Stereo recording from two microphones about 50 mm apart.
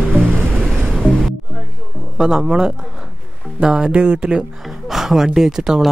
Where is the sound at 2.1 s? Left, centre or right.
Centre.